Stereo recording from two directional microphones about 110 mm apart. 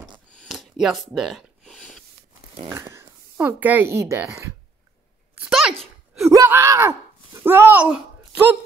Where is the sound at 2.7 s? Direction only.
25° right (ahead or behind).